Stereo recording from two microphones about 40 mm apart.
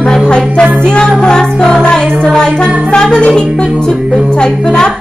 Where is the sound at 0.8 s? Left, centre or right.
Left.